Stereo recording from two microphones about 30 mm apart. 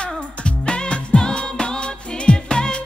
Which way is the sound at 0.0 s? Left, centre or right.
Left.